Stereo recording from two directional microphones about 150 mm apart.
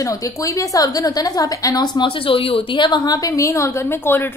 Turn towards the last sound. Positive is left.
turn(degrees=15)  # may be behind; listen again after turning